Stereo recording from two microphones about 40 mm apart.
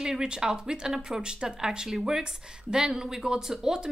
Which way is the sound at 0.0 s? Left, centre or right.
Centre.